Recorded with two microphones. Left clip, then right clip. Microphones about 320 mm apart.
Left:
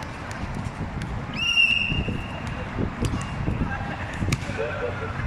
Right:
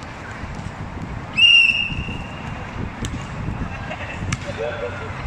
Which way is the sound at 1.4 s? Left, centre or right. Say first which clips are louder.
Right 12 dB; centre.